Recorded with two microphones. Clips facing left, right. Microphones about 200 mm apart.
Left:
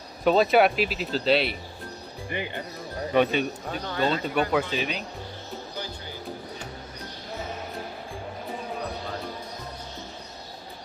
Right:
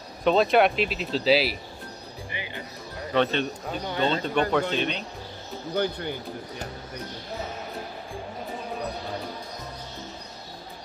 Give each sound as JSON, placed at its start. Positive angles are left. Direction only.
{"t": 0.2, "sound": "speech", "side_deg": 5}
{"t": 2.2, "sound": "speech", "side_deg": 55}
{"t": 3.1, "sound": "speech", "side_deg": 10}
{"t": 3.8, "sound": "speech", "side_deg": -25}
{"t": 4.2, "sound": "speech", "side_deg": 5}
{"t": 5.8, "sound": "speech", "side_deg": -60}